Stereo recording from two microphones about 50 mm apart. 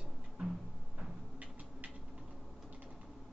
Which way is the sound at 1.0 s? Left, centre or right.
Right.